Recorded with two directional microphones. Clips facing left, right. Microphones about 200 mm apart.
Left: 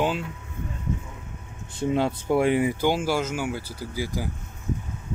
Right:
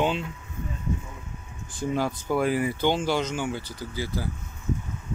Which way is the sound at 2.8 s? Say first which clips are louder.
Left 1 dB; 5° left (ahead or behind).